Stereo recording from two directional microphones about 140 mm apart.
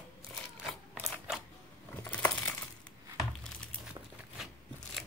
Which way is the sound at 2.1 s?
10° left (ahead or behind).